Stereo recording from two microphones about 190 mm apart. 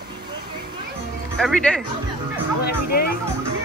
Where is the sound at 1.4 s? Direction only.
5° left (ahead or behind).